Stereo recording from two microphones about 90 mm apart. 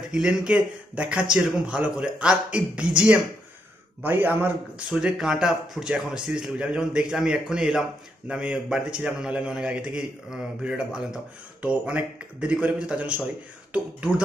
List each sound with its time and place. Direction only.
0.1 s a man's voice: 10° right (ahead or behind)
4.0 s speech: 20° right (ahead or behind)
4.9 s a man's voice: 5° right (ahead or behind)